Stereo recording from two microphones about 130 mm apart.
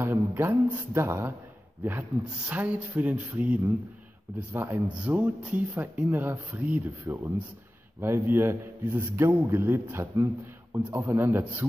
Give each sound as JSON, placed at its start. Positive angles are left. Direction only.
{"t": 0.0, "sound": "a man's voice", "side_deg": -15}